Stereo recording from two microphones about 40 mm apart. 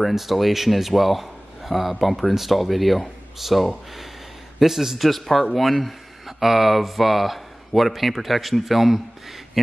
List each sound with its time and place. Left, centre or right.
0.0 s a man's voice: centre